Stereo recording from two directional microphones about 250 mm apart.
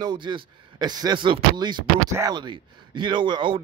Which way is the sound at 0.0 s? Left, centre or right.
Centre.